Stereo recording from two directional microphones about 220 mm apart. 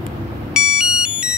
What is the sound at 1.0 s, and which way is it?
Ringtone, 5° right (ahead or behind).